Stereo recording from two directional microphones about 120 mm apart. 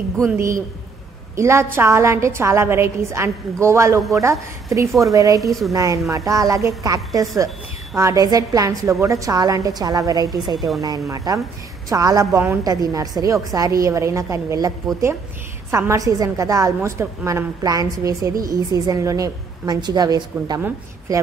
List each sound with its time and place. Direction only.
1.3 s a woman's voice: 25° right (ahead or behind)
5.4 s speech: centre (ahead or behind)
5.7 s a woman's voice: 25° right (ahead or behind)
10.4 s speech: centre (ahead or behind)
10.8 s a woman's voice: 30° right (ahead or behind)
15.7 s a woman's voice: 25° right (ahead or behind)